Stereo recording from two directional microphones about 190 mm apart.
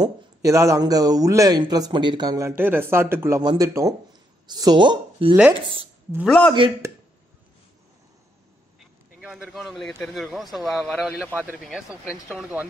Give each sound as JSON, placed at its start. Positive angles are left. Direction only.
{"t": 0.0, "sound": "speech", "side_deg": -15}
{"t": 6.2, "sound": "a man's voice", "side_deg": 5}
{"t": 8.7, "sound": "a man's voice", "side_deg": -5}